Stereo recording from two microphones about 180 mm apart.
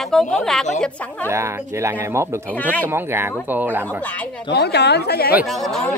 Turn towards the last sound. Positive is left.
turn(degrees=0)  # may be behind; listen again after turning